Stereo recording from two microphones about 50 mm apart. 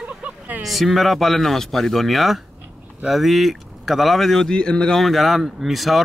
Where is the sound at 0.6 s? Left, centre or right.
Centre.